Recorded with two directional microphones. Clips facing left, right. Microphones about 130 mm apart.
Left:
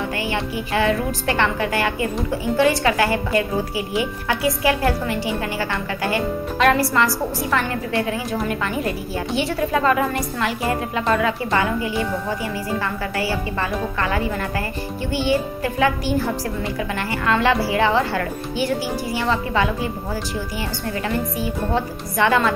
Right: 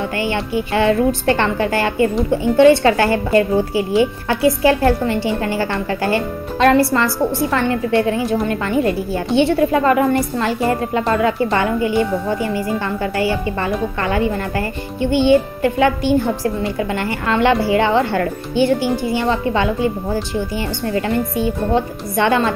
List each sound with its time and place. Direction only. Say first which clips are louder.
0.2 s a woman's voice: right 5 dB; 30° right (ahead or behind)
22.1 s a woman's voice: right 2 dB; 30° right (ahead or behind)